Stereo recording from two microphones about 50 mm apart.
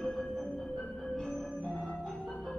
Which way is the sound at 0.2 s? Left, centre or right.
Centre.